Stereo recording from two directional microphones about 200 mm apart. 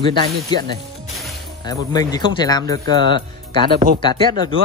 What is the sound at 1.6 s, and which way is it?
Speech, 20° left (ahead or behind).